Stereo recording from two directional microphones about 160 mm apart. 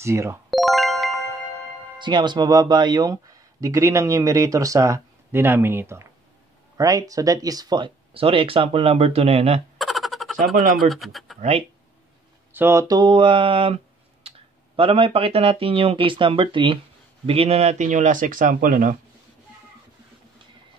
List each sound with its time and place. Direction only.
0.0 s speech: 15° right (ahead or behind)
0.5 s music: centre (ahead or behind)
2.0 s speech: 30° right (ahead or behind)
9.8 s a sound: centre (ahead or behind)
10.5 s speech: 60° right (ahead or behind)
10.9 s speech: centre (ahead or behind)
12.5 s speech: 15° right (ahead or behind); by 13.7 s 35° right (ahead or behind)
14.8 s speech: 35° right (ahead or behind); by 18.9 s 60° right (ahead or behind)